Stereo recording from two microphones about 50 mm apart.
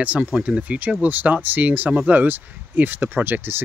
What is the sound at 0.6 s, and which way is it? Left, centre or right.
Speech, right.